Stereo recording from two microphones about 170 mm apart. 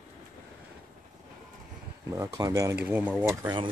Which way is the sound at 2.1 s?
20° right (ahead or behind).